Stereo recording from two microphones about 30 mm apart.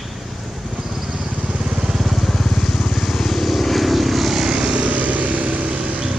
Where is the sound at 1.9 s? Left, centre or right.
Centre.